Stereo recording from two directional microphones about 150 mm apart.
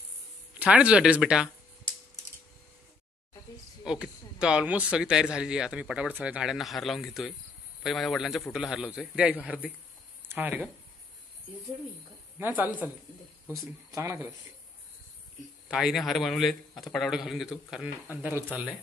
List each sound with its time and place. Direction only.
0.6 s speech: 5° right (ahead or behind)
3.8 s a man's voice: 5° right (ahead or behind)
12.4 s speech: 15° right (ahead or behind)
13.9 s speech: 15° right (ahead or behind)
15.7 s a man's voice: centre (ahead or behind)